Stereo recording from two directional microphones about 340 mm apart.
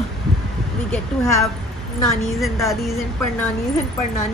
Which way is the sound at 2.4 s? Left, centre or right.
Centre.